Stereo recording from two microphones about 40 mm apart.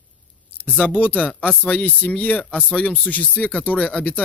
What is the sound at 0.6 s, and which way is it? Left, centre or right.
Speech, left.